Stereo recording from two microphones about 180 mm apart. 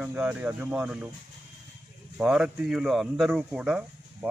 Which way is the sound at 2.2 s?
5° right (ahead or behind).